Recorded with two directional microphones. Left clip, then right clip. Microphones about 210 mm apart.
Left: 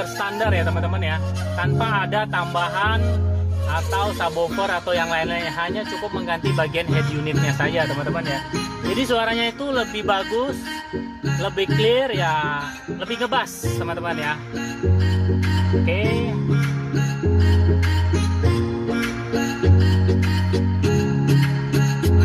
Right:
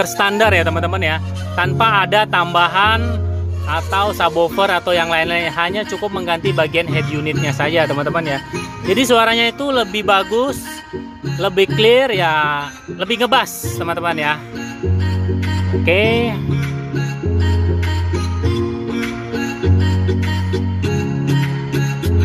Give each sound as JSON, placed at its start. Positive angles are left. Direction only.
{"t": 0.0, "sound": "speech", "side_deg": -40}
{"t": 15.8, "sound": "speech", "side_deg": -30}